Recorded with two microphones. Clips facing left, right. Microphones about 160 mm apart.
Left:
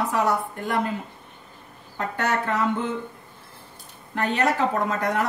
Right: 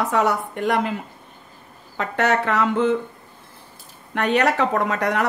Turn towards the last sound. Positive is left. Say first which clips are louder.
# right 3 dB
turn(degrees=-75)  # may be behind; listen again after turning